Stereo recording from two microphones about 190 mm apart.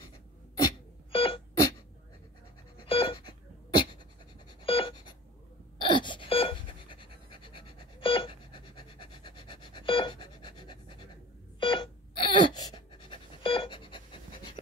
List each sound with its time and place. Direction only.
1.1 s wail: 25° left (ahead or behind)
2.8 s wail: 25° left (ahead or behind)
4.6 s writing: 25° left (ahead or behind)
5.8 s pant: 25° left (ahead or behind)